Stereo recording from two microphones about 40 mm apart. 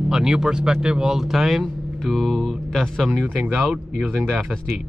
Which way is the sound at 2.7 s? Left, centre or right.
Centre.